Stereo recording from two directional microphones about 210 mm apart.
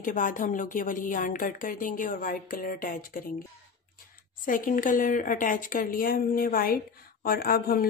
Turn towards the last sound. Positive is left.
turn(degrees=45)  # may be behind; listen again after turning